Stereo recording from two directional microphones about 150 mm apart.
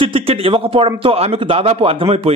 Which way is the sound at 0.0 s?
40° right (ahead or behind).